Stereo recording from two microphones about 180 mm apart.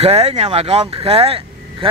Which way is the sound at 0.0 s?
35° right (ahead or behind).